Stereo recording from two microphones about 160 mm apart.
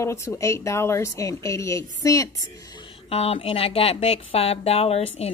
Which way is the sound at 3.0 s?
35° left (ahead or behind).